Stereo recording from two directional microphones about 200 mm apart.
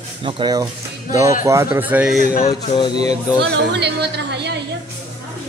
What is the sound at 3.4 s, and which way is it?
Speech, 55° right (ahead or behind).